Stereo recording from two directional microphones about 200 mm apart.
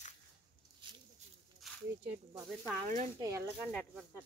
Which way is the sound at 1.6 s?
Centre (ahead or behind).